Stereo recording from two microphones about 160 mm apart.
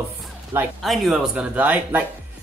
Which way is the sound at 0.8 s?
Centre (ahead or behind).